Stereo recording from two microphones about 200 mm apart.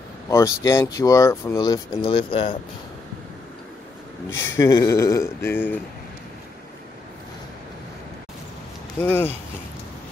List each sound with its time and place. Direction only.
0.3 s speech: 15° left (ahead or behind)
4.4 s speech: 15° left (ahead or behind)
9.0 s speech: 10° left (ahead or behind)